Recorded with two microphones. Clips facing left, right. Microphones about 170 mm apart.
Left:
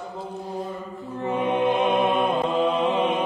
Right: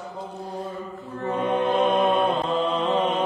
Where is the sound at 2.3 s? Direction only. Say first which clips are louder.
Left 2 dB; 10° left (ahead or behind).